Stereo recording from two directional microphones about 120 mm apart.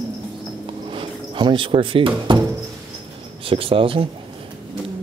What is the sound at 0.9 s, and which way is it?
Speech, 45° right (ahead or behind).